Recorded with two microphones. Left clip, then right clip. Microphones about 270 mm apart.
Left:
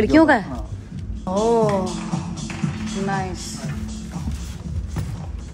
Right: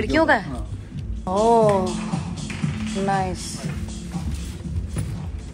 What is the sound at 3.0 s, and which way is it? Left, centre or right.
Speech, centre.